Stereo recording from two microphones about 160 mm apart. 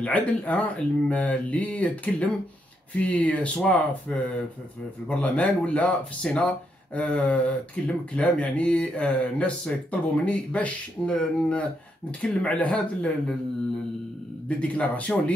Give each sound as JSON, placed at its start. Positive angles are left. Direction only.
{"t": 0.0, "sound": "speech", "side_deg": 10}
{"t": 14.6, "sound": "speech", "side_deg": 10}